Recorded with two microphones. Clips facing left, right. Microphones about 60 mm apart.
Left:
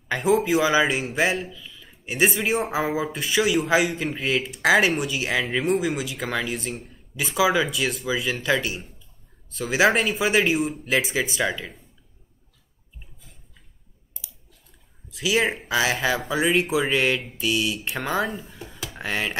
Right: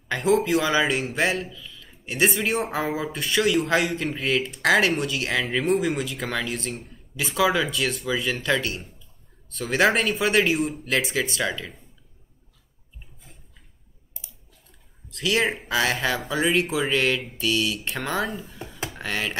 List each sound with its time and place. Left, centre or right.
0.1 s speech: centre
15.0 s speech: centre
18.6 s a sound: right
18.9 s speech: centre